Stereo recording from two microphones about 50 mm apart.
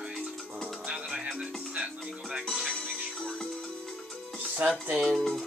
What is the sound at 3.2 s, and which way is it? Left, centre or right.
Music, centre.